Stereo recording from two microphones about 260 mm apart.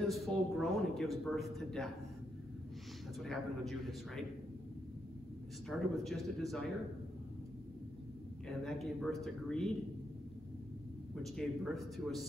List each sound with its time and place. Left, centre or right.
0.1 s speech: centre
3.2 s speech: centre
5.7 s speech: centre
8.5 s speech: centre
11.2 s speech: centre